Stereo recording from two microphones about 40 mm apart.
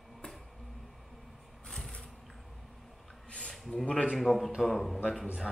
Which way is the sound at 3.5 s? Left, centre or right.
Centre.